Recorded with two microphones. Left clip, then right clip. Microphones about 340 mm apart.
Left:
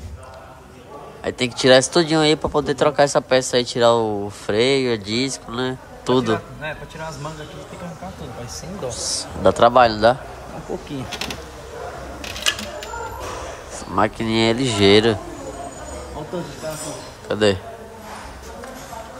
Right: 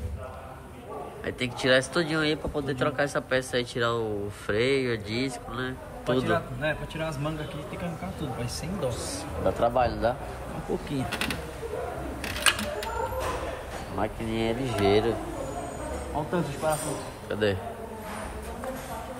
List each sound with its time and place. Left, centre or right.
1.2 s speech: centre
8.8 s speech: centre
9.4 s speech: left
13.9 s speech: left
17.3 s speech: centre